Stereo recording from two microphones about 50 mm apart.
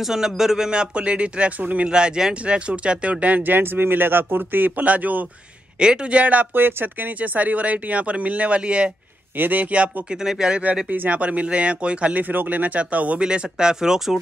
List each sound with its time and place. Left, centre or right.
0.0 s a man's voice: centre; by 1.9 s right
1.9 s speech: centre
5.8 s a man's voice: right
9.4 s speech: right
10.2 s speech: centre
10.9 s a man's voice: right; by 14.1 s centre